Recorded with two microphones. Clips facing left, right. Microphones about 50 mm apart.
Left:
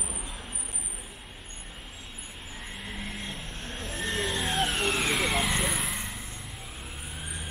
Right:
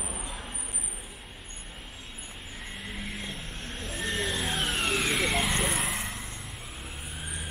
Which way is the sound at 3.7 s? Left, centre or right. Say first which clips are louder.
Even; centre.